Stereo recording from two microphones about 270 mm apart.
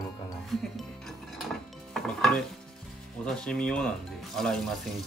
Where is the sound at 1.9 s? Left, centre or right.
Centre.